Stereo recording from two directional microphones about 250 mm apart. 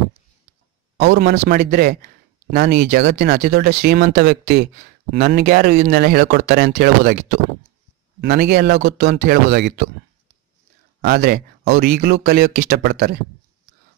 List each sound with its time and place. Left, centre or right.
0.9 s speech: right
11.0 s speech: right